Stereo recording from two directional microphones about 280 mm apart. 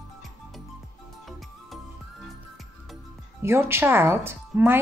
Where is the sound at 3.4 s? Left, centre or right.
Centre.